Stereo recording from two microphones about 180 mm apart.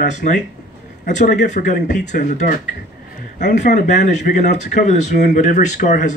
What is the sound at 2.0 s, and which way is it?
Speech, 45° left (ahead or behind).